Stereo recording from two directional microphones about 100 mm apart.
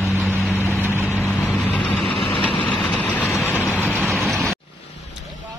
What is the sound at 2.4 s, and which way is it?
Vehicle, 15° left (ahead or behind).